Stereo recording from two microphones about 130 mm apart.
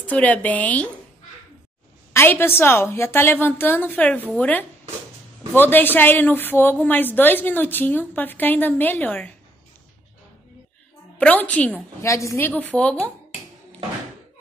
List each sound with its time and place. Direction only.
0.0 s a woman's voice: 10° left (ahead or behind)
2.1 s a woman's voice: 15° left (ahead or behind)
11.1 s a woman's voice: 10° left (ahead or behind)
12.0 s a woman's voice: 25° left (ahead or behind)